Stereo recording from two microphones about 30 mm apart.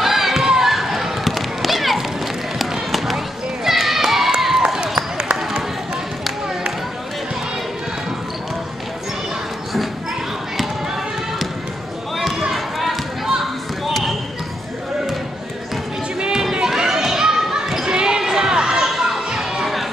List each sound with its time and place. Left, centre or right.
0.0 s basketball bounce: centre
3.7 s run: centre
4.4 s a sound: centre
12.2 s basketball bounce: centre
16.2 s run: right
16.6 s a sound: centre
17.8 s basketball bounce: right
18.2 s crowd: centre
18.9 s music: centre